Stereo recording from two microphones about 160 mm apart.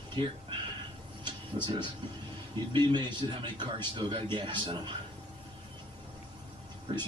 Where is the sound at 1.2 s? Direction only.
30° right (ahead or behind).